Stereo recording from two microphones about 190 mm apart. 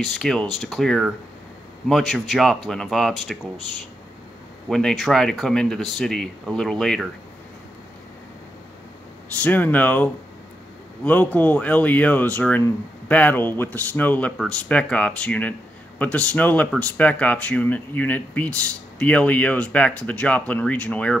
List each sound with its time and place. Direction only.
0.0 s speech: 5° left (ahead or behind)
4.6 s speech: centre (ahead or behind)
9.4 s speech: 10° left (ahead or behind)
11.1 s speech: 10° left (ahead or behind)